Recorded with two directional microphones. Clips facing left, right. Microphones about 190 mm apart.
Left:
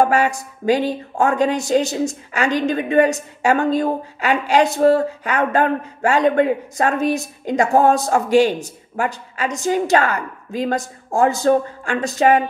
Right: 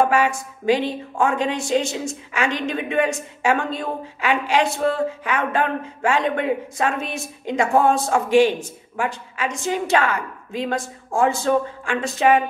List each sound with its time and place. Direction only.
0.0 s a woman's voice: 40° left (ahead or behind)